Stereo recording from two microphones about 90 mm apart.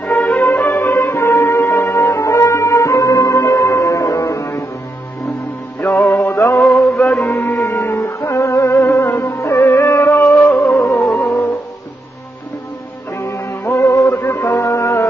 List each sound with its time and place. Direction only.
0.0 s music: 10° left (ahead or behind); by 4.6 s 35° left (ahead or behind)
5.8 s music: 30° left (ahead or behind)
6.7 s music: 10° left (ahead or behind)
7.3 s music: 25° left (ahead or behind)
13.2 s music: 30° left (ahead or behind)
14.0 s music: 20° left (ahead or behind)
14.5 s music: 30° left (ahead or behind)